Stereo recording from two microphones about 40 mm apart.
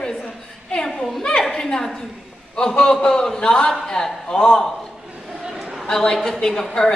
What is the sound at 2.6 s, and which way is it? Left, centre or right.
A man's voice, centre.